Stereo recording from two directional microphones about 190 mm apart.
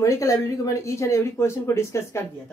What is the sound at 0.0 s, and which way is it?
Speech, 15° left (ahead or behind).